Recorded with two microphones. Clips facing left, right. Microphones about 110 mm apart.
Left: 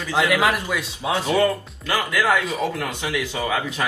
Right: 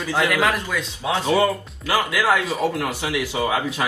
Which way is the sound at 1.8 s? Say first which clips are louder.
Right 1 dB; 10° right (ahead or behind).